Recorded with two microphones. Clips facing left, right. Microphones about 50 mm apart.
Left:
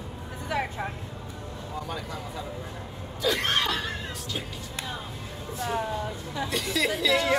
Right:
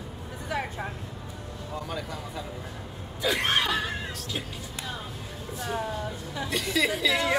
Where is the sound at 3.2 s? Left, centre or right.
Right.